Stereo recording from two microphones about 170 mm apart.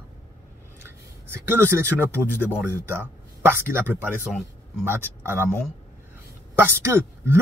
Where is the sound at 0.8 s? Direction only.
15° right (ahead or behind).